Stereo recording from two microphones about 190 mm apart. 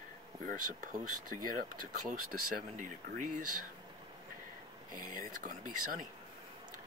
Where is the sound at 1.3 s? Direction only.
45° right (ahead or behind).